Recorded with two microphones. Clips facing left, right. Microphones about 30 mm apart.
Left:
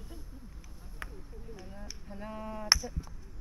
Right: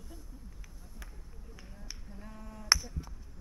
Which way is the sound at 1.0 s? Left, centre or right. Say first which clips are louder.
Left 10 dB; left.